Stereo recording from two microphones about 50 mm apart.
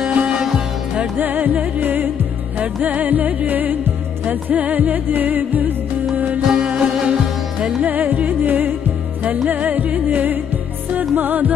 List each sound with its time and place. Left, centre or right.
0.2 s music: right
6.5 s music: centre
7.8 s music: right